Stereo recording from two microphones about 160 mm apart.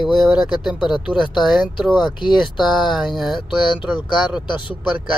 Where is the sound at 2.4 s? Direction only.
Centre (ahead or behind).